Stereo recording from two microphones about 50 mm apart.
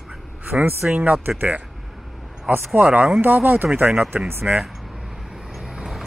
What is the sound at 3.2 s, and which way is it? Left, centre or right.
Speech, right.